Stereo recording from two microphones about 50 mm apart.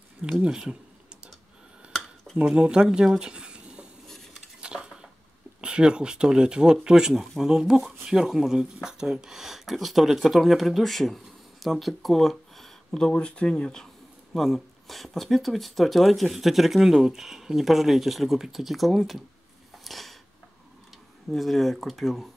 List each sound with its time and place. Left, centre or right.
0.2 s speech: centre
2.4 s speech: centre
3.2 s a sound: centre
5.6 s speech: centre
14.3 s speech: centre
19.8 s a sound: centre
21.3 s speech: centre